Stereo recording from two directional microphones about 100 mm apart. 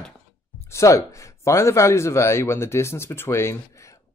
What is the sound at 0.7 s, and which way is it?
Speech, 30° left (ahead or behind).